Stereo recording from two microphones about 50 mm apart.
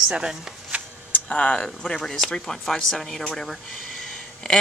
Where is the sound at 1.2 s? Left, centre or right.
Left.